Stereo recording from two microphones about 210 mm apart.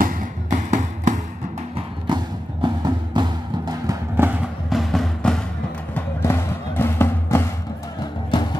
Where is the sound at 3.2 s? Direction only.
15° right (ahead or behind).